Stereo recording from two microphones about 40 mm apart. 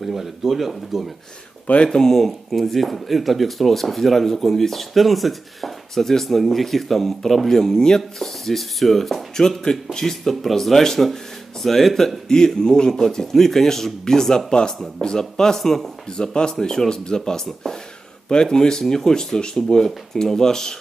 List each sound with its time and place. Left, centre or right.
0.0 s speech: centre
1.9 s speech: centre
8.0 s speech: centre
12.3 s a man's voice: centre
16.1 s speech: left